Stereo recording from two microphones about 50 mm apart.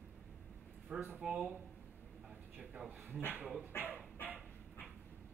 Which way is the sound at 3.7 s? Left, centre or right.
Left.